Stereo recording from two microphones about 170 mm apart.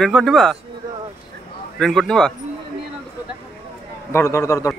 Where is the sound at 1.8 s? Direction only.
5° left (ahead or behind).